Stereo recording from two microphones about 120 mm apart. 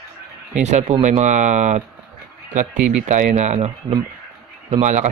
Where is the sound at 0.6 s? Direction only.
80° right.